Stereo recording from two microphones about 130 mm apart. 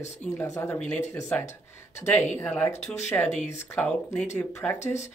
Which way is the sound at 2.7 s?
60° left (ahead or behind).